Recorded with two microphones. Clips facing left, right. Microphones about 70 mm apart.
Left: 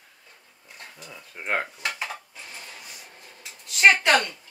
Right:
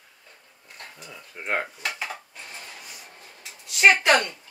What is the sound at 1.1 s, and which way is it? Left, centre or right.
Speech, centre.